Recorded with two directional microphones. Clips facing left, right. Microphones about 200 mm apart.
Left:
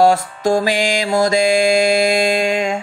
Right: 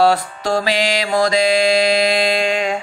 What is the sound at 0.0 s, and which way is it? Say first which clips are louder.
Mantra: left 2 dB; 45° left (ahead or behind).